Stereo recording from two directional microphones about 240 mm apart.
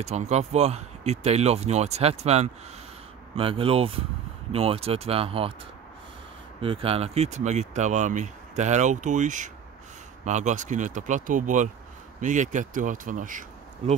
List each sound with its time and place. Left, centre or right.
0.0 s speech: right
6.6 s speech: right